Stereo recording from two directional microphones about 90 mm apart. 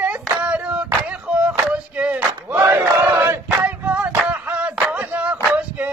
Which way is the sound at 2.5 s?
25° right (ahead or behind).